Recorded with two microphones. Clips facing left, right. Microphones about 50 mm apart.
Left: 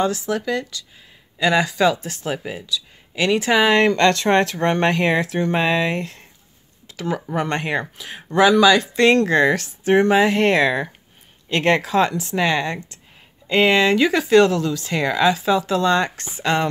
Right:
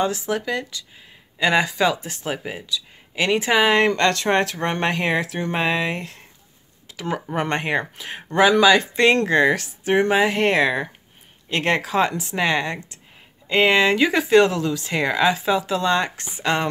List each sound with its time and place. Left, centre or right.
0.0 s speech: centre
3.5 s speech: centre
8.0 s speech: right
8.4 s speech: right